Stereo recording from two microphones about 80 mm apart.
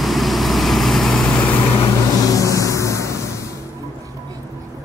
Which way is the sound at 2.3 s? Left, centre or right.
Left.